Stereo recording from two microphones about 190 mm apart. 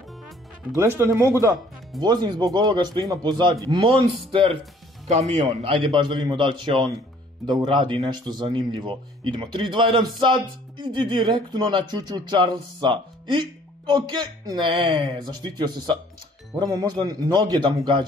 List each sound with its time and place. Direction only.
0.7 s speech: 15° right (ahead or behind)